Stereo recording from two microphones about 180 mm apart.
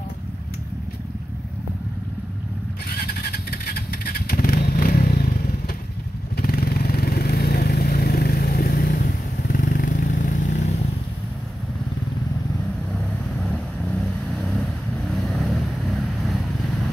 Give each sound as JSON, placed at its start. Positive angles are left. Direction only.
{"t": 2.9, "sound": "vehicle", "side_deg": 60}
{"t": 6.3, "sound": "vehicle", "side_deg": 55}
{"t": 12.9, "sound": "vehicle", "side_deg": 5}